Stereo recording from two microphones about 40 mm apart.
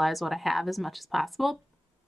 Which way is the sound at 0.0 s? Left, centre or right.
Centre.